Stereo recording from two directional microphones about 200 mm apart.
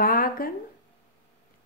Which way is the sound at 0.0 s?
45° left (ahead or behind).